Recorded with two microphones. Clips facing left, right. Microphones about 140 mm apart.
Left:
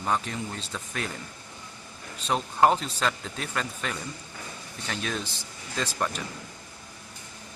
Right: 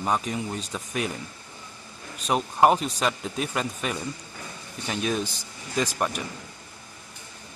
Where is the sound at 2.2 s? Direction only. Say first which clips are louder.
Right 2 dB; 15° right (ahead or behind).